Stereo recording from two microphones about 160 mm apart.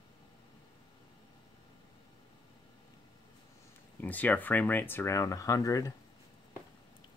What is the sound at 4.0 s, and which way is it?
Speech, 10° left (ahead or behind).